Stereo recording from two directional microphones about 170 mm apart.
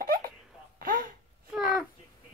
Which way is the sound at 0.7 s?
55° right (ahead or behind).